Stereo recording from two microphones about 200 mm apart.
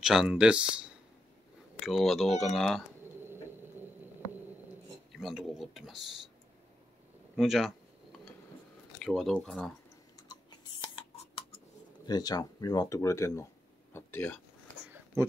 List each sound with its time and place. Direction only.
0.0 s speech: 5° right (ahead or behind)
5.1 s speech: centre (ahead or behind)
7.3 s speech: centre (ahead or behind)
9.0 s speech: centre (ahead or behind)
11.0 s a sound: 25° left (ahead or behind)
12.1 s speech: 20° left (ahead or behind)
15.2 s speech: 15° right (ahead or behind)